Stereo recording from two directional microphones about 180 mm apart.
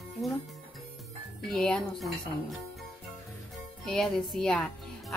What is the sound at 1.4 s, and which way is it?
Speech, 5° left (ahead or behind).